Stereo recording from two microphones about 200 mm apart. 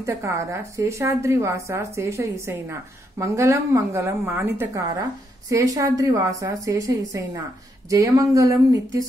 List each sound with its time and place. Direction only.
0.0 s speech: 15° right (ahead or behind)